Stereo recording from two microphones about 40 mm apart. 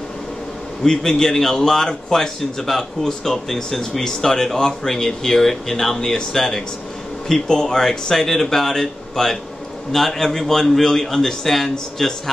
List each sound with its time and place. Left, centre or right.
0.8 s a man's voice: centre